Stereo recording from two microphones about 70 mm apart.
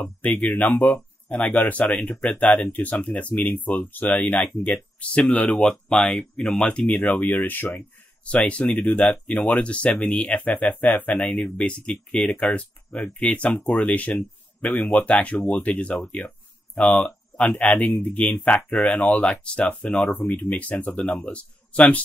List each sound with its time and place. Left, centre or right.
0.2 s speech: left